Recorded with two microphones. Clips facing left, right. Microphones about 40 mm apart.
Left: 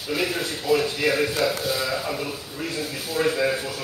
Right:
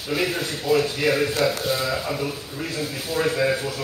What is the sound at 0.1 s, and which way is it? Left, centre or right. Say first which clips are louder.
Speech: right 1 dB; centre.